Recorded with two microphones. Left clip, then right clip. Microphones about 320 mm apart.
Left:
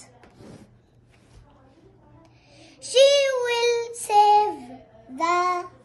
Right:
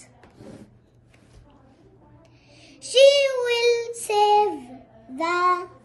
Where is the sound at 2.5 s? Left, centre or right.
Left.